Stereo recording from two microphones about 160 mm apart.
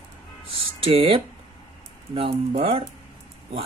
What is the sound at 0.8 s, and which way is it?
Speech, 35° right (ahead or behind).